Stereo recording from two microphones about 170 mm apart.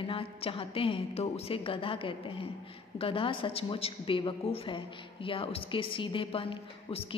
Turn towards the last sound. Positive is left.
turn(degrees=35)  # may be behind; listen again after turning